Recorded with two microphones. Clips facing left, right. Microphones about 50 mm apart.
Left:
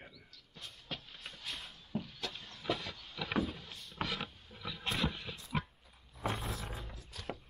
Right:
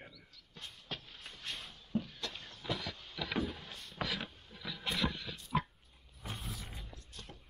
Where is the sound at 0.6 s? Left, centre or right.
Centre.